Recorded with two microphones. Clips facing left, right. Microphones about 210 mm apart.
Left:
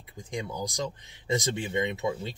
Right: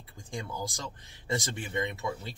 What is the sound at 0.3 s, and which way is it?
Speech, 20° left (ahead or behind).